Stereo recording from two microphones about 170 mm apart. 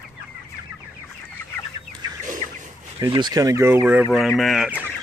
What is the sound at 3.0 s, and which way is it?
Speech, 25° right (ahead or behind).